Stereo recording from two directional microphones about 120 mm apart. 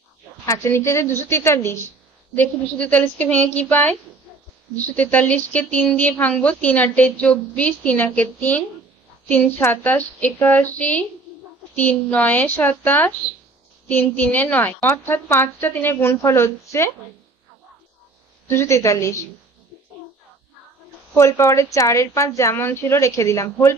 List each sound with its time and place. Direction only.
0.5 s speech: 20° left (ahead or behind)
18.5 s speech: 20° left (ahead or behind)
21.1 s speech: 25° left (ahead or behind)